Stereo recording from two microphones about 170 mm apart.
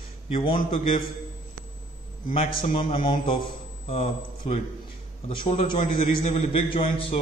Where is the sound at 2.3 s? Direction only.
35° left (ahead or behind).